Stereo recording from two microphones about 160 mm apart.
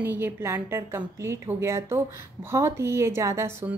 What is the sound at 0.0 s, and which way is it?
A woman's voice, 15° right (ahead or behind).